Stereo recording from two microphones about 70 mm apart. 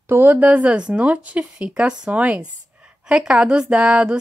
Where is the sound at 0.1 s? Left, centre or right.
Right.